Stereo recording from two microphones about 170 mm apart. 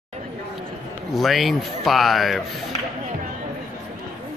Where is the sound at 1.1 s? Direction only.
Centre (ahead or behind).